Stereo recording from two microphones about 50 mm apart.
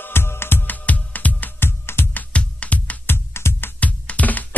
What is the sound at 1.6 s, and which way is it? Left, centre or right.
Music, left.